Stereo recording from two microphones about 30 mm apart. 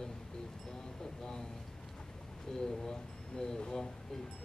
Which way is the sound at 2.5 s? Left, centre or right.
Left.